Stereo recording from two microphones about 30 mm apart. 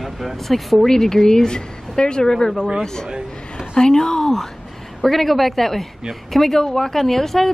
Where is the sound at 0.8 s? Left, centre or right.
Centre.